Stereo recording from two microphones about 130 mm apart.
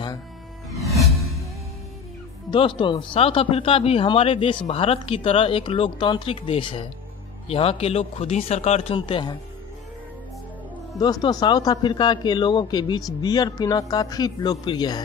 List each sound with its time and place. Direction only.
0.8 s music: centre (ahead or behind)
2.5 s speech: 40° left (ahead or behind)
11.0 s speech: 30° left (ahead or behind)